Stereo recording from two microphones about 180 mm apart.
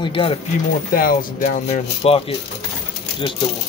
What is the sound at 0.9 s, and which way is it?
A man's voice, 50° left (ahead or behind).